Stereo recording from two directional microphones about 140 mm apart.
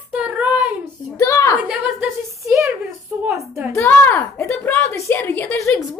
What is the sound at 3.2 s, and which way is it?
Speech, 15° right (ahead or behind).